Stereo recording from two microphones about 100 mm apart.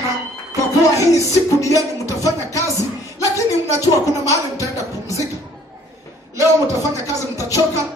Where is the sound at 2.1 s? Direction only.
30° right (ahead or behind).